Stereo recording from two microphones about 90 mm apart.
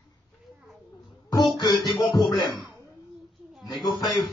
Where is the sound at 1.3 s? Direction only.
45° left (ahead or behind).